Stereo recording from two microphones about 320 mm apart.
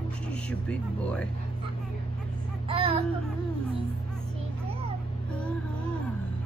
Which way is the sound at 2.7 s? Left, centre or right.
Centre.